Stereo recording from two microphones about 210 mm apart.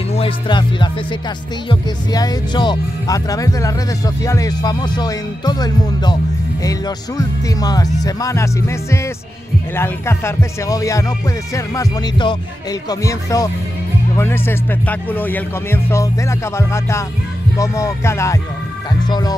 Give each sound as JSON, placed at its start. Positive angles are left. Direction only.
{"t": 0.1, "sound": "speech", "side_deg": 25}